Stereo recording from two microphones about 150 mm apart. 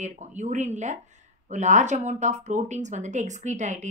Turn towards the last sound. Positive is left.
turn(degrees=-55)  # may be behind; listen again after turning